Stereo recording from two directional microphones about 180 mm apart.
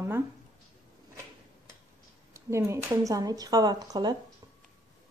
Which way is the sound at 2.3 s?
15° right (ahead or behind).